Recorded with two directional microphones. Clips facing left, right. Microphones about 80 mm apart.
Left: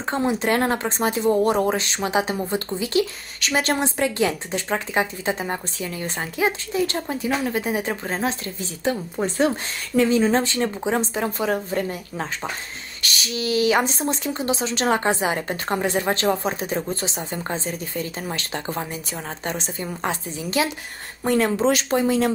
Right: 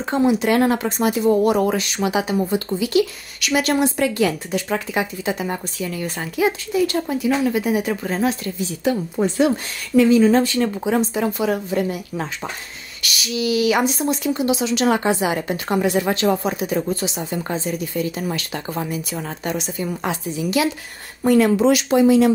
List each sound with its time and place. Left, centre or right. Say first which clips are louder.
0.3 s speech: right 3 dB; left